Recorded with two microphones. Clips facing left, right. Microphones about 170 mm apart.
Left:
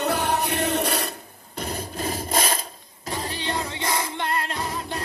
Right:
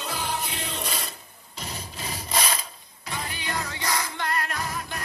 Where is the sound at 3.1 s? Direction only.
35° left (ahead or behind).